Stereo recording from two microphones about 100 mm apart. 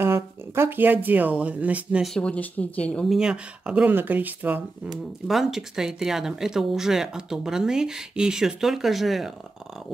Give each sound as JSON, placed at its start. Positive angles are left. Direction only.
{"t": 0.0, "sound": "speech", "side_deg": -25}
{"t": 2.1, "sound": "speech", "side_deg": 10}
{"t": 3.1, "sound": "speech", "side_deg": -5}
{"t": 5.3, "sound": "speech", "side_deg": -5}